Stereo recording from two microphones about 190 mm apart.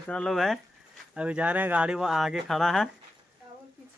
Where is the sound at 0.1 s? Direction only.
Centre (ahead or behind).